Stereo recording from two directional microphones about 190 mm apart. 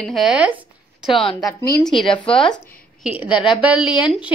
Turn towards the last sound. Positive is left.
turn(degrees=-5)  # may be behind; listen again after turning